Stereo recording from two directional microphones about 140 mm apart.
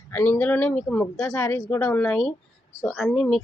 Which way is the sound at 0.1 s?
15° left (ahead or behind).